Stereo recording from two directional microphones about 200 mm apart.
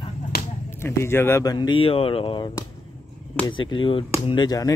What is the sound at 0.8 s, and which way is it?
Speech, 10° left (ahead or behind).